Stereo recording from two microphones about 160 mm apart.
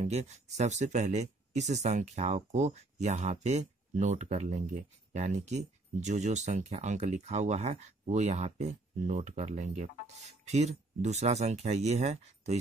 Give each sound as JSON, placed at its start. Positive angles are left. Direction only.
{"t": 0.0, "sound": "speech", "side_deg": -45}